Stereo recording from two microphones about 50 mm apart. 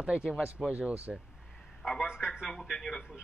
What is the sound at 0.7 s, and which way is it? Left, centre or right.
Speech, right.